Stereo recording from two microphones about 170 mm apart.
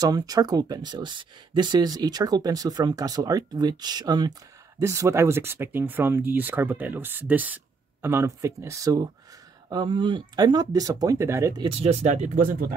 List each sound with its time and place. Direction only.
0.0 s speech: 20° right (ahead or behind)
11.6 s speech: 35° right (ahead or behind); by 12.7 s 55° right (ahead or behind)